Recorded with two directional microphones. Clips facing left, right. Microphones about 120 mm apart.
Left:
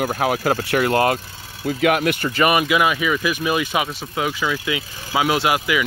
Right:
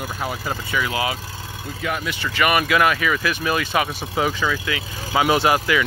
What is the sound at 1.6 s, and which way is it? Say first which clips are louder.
Speech: left 9 dB; 85° left.